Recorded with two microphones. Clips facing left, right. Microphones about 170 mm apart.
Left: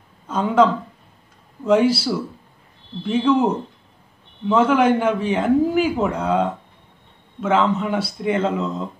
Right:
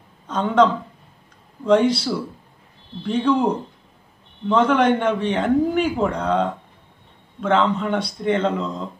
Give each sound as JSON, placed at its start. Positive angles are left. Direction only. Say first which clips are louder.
{"t": 0.3, "sound": "a man's voice", "louder": "left 1 dB", "side_deg": 5}